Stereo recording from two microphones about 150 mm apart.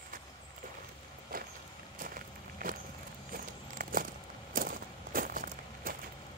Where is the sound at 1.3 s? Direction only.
70° right (ahead or behind).